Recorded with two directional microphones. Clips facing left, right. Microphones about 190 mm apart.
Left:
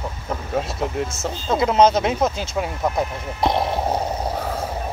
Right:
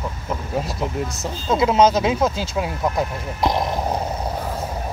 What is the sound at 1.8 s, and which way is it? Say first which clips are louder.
Speech: left 1 dB; 25° left (ahead or behind).